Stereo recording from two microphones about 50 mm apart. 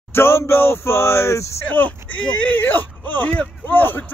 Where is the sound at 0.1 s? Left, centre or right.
Left.